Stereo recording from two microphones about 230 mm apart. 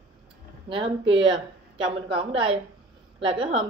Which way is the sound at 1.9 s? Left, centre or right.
Right.